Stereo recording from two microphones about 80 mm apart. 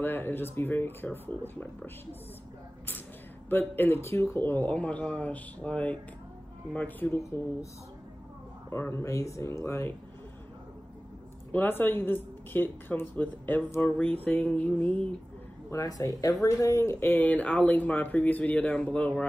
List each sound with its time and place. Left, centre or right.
0.0 s speech: left
3.4 s speech: left
8.6 s speech: left
11.5 s speech: left
15.7 s speech: left; by 19.2 s centre